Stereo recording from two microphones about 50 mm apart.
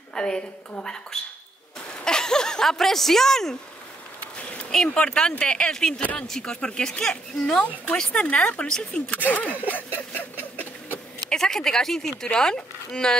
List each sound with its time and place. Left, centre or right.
0.1 s a woman's voice: centre
1.9 s a sound: centre
4.8 s a woman's voice: left
9.1 s speech: left
9.7 s a sound: left
11.2 s a woman's voice: centre